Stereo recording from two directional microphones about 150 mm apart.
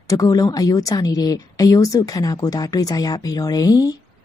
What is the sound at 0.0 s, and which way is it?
Speech, 25° left (ahead or behind).